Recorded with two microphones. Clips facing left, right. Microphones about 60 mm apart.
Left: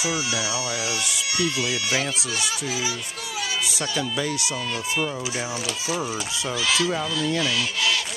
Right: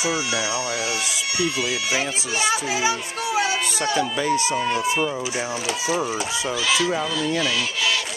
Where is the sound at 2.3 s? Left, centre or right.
Right.